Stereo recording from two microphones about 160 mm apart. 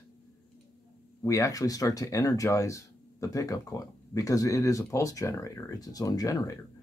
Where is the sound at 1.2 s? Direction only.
20° left (ahead or behind).